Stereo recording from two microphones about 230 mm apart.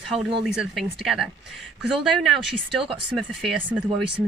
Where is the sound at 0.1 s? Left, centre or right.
Right.